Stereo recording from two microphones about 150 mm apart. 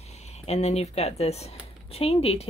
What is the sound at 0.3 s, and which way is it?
Speech, 45° left (ahead or behind).